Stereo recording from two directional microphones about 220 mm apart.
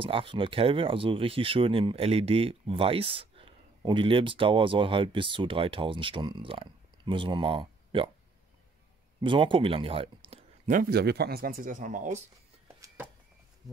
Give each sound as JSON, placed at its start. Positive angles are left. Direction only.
{"t": 0.0, "sound": "speech", "side_deg": -25}
{"t": 9.2, "sound": "speech", "side_deg": -25}
{"t": 10.7, "sound": "speech", "side_deg": -40}
{"t": 12.8, "sound": "a sound", "side_deg": -10}